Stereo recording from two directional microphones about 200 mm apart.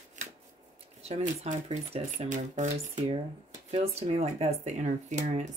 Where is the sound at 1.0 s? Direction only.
30° right (ahead or behind).